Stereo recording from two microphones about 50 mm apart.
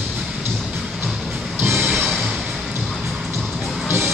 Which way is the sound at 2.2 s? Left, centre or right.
Centre.